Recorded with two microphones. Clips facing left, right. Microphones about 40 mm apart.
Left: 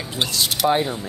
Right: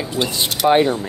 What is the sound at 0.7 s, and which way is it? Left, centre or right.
Speech, right.